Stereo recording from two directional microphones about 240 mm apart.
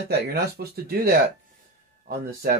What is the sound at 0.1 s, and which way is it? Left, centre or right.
Speech, right.